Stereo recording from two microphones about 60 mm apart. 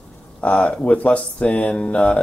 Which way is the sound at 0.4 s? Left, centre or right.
Left.